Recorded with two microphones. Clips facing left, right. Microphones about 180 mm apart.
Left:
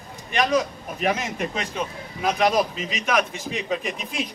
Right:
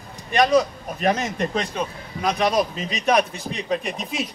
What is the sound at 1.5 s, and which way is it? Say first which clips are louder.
A man's voice: right 3 dB; 35° right (ahead or behind).